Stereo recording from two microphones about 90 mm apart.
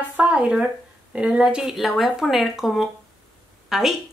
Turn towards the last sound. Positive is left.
turn(degrees=-5)  # may be behind; listen again after turning